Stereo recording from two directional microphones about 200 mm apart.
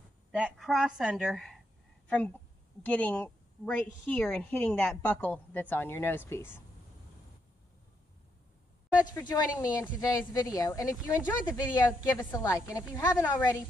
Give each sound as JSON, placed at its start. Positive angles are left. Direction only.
{"t": 0.3, "sound": "a woman's voice", "side_deg": -5}
{"t": 9.3, "sound": "a woman's voice", "side_deg": 20}